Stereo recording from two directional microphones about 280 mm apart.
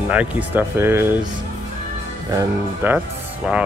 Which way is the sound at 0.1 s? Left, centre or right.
Centre.